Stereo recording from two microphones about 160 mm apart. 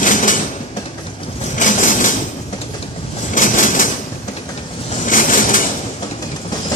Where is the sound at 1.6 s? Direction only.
55° left (ahead or behind).